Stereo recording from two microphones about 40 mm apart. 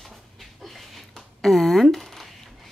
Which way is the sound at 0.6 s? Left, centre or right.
Centre.